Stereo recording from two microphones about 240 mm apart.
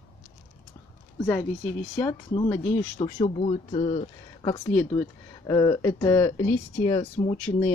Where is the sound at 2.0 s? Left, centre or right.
Centre.